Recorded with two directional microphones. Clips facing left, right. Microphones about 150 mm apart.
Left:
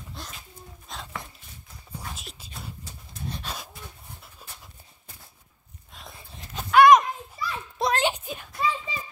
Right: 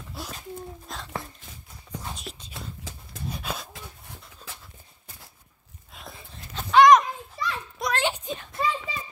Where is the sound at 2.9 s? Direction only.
90° right.